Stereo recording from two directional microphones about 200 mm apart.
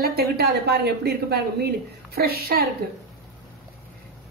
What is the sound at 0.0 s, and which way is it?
A woman's voice, 50° right (ahead or behind).